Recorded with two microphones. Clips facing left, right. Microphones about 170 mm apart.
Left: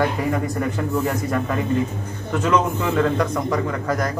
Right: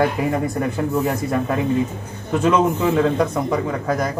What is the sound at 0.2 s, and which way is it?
A man's voice, 20° right (ahead or behind).